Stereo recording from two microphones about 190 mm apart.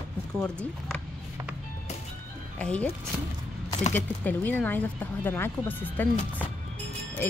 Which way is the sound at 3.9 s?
10° left (ahead or behind).